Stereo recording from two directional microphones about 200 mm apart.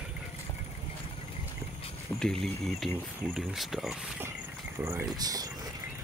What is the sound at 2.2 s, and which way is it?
Speech, centre (ahead or behind).